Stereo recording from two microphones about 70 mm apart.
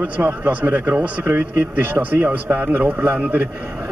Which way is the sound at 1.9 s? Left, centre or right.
Right.